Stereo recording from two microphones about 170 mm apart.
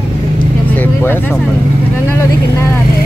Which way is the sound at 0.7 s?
10° left (ahead or behind).